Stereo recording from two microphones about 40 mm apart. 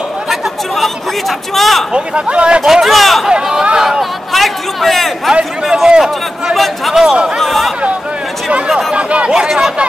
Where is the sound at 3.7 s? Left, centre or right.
Centre.